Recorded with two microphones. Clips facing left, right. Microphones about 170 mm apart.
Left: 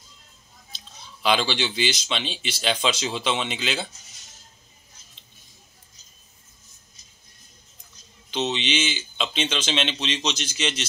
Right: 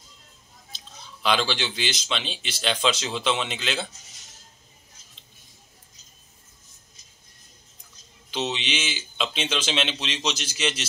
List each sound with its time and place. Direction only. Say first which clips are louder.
0.7 s speech: right 1 dB; centre (ahead or behind)
8.3 s speech: left 3 dB; 5° right (ahead or behind)